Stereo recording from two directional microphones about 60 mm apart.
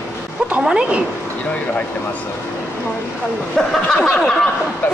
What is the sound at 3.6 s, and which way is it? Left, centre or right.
Speech, centre.